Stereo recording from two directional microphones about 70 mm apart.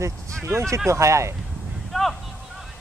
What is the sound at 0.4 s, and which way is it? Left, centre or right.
Speech, right.